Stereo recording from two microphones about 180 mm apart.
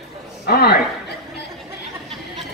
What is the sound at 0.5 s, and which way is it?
Speech, 60° left (ahead or behind).